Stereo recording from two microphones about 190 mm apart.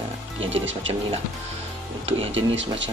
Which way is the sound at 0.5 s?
80° right.